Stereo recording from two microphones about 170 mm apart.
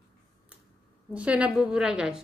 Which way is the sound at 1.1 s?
5° right (ahead or behind).